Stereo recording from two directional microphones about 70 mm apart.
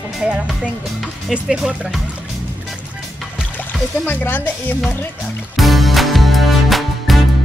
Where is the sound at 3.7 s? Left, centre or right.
Left.